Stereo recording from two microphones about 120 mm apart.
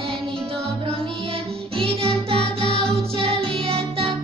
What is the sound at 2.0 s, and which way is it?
Music, 55° right (ahead or behind).